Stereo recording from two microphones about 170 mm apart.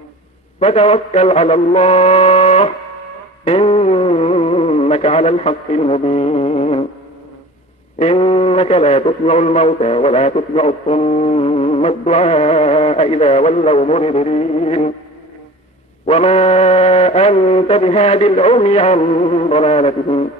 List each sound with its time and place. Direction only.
0.6 s a man's voice: 35° left (ahead or behind)
3.4 s music: 35° left (ahead or behind)
8.0 s a man's voice: 35° left (ahead or behind)
16.1 s a man's voice: 35° left (ahead or behind)